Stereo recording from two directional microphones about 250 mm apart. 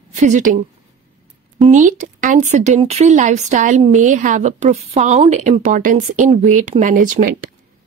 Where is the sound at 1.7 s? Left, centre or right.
Right.